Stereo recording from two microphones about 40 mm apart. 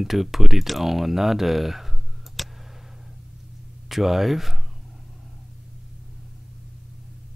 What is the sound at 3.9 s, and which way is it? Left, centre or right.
Speech, centre.